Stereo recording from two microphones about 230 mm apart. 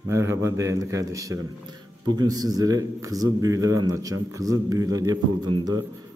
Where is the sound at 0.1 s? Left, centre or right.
Centre.